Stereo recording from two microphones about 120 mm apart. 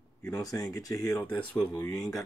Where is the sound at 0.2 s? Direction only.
30° left (ahead or behind).